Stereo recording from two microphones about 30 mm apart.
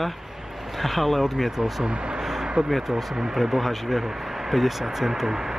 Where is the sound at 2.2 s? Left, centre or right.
Centre.